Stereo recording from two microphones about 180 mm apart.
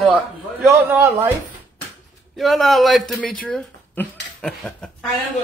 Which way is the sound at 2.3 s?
Centre (ahead or behind).